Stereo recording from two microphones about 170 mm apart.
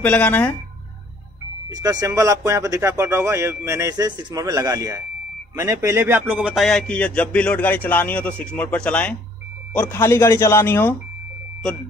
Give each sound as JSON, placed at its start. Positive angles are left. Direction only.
{"t": 0.0, "sound": "speech", "side_deg": 10}
{"t": 1.7, "sound": "speech", "side_deg": -25}